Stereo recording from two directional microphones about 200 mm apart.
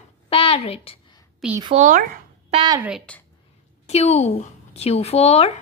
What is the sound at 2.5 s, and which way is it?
Speech, 20° right (ahead or behind).